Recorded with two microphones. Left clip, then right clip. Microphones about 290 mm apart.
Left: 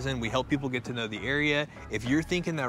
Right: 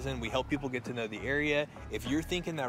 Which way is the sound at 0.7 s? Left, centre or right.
Left.